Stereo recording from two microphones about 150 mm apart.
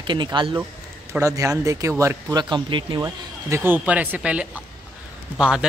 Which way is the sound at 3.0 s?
15° right (ahead or behind).